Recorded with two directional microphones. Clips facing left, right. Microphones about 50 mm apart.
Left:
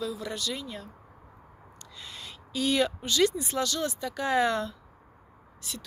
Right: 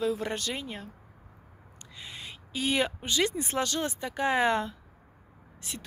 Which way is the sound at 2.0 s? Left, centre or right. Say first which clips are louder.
Right 1 dB; right.